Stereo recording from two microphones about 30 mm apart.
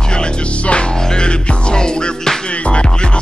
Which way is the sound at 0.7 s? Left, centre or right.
Left.